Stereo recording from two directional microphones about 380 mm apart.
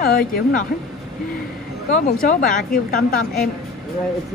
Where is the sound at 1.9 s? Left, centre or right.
Left.